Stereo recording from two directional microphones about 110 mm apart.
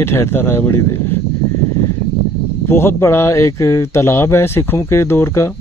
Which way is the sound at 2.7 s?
20° left (ahead or behind).